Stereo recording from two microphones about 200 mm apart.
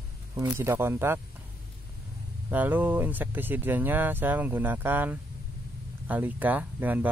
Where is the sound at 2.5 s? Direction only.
10° right (ahead or behind).